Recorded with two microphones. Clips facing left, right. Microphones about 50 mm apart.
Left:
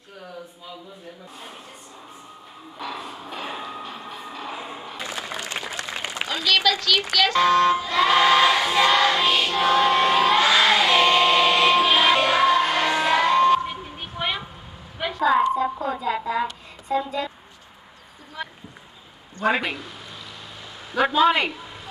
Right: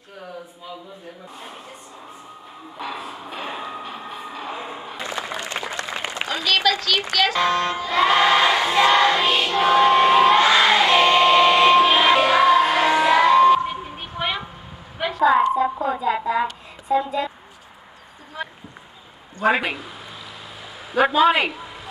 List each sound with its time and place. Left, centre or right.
3.0 s a sound: centre
5.2 s applause: centre
6.2 s a sound: right
7.2 s speech: centre
7.6 s choir: centre
15.0 s a sound: centre
16.8 s speech: centre
19.4 s speech: centre
20.9 s a man's voice: centre